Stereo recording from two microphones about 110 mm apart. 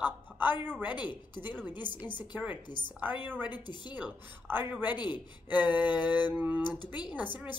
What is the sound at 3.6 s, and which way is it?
Speech, 45° left (ahead or behind).